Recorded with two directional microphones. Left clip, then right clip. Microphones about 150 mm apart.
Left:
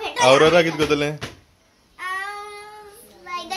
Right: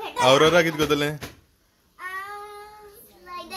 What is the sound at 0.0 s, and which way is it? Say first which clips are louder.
Speech: left 3 dB; 10° right (ahead or behind).